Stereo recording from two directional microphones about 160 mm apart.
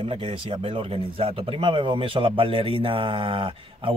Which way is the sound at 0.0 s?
30° right (ahead or behind).